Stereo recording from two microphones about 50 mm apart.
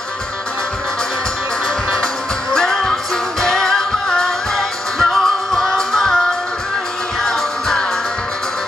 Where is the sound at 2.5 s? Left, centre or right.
Centre.